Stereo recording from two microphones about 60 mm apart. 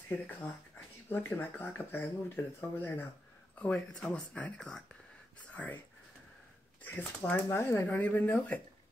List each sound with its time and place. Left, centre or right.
0.1 s speech: left
3.7 s speech: centre
4.6 s speech: centre
5.5 s speech: left
6.8 s speech: left
7.4 s speech: left
7.8 s speech: left